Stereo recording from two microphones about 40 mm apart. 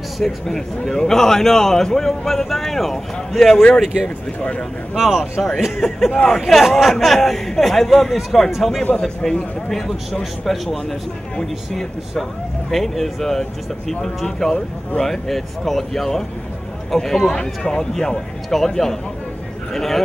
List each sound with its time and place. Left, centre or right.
0.2 s speech: centre
3.8 s speech: centre
4.4 s speech: left
4.9 s speech: centre
5.8 s speech: centre
9.7 s speech: centre
12.7 s speech: centre